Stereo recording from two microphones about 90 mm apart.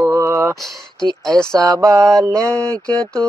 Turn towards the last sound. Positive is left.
turn(degrees=10)  # may be behind; listen again after turning